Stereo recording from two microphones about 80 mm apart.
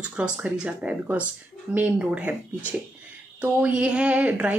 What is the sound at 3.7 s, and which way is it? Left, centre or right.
Speech, centre.